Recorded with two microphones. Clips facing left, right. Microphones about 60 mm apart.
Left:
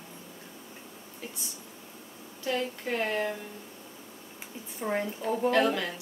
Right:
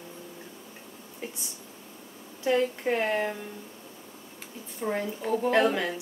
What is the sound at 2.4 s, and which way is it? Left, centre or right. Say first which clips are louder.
Speech: right 6 dB; right.